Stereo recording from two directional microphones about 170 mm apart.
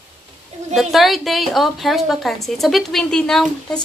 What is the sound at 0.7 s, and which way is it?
A woman's voice, centre (ahead or behind).